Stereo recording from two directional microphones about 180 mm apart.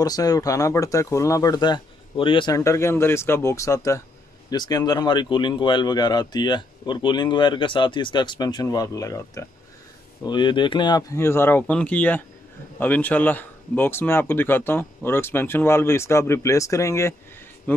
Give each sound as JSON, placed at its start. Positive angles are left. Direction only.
{"t": 0.0, "sound": "speech", "side_deg": 20}